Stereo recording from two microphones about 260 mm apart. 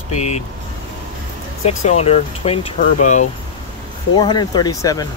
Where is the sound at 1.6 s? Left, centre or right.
Left.